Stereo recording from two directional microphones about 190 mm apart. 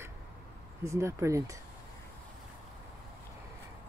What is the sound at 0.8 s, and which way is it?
Speech, 15° right (ahead or behind).